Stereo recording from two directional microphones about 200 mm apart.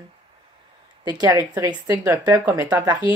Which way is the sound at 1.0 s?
15° right (ahead or behind).